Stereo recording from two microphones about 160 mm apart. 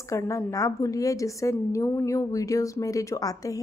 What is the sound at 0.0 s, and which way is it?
A woman's voice, 20° left (ahead or behind).